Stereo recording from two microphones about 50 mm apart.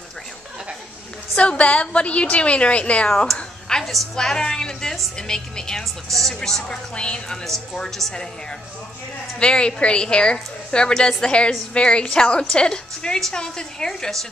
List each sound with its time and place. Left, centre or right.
1.3 s a woman's voice: left
3.3 s a sound: centre
3.8 s a woman's voice: centre
4.1 s a woman's voice: centre